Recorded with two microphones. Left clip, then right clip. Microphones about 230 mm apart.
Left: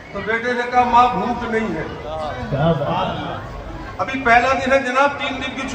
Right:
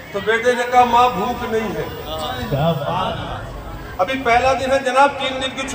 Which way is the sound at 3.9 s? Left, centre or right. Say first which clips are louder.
Left 1 dB; right.